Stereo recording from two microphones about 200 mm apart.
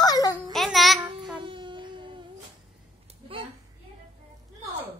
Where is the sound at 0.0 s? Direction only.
20° left (ahead or behind).